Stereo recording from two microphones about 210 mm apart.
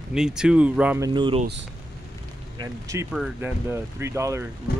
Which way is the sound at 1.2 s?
25° right (ahead or behind).